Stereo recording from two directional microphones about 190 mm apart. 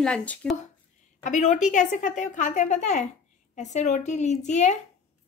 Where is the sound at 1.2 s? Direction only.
40° left (ahead or behind).